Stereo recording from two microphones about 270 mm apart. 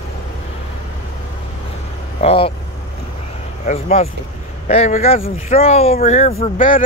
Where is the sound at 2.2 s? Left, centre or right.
Left.